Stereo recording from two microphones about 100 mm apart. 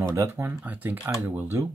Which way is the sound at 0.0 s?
30° right (ahead or behind).